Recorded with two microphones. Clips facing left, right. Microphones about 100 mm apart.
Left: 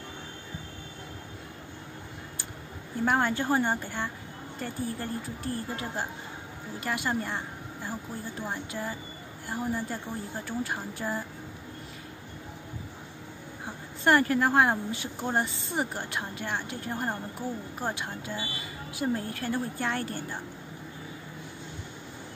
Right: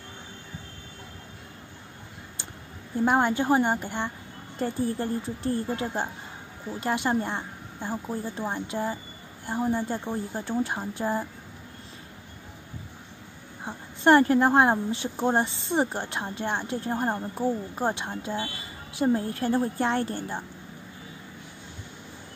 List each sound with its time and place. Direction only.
3.1 s a woman's voice: 15° right (ahead or behind)
13.7 s a woman's voice: 25° right (ahead or behind)